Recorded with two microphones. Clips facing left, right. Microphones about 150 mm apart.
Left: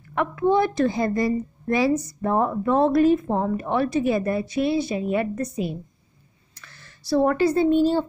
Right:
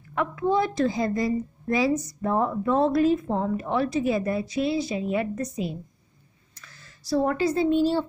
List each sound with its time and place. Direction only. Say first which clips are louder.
0.1 s a woman's voice: left 3 dB; 60° left (ahead or behind)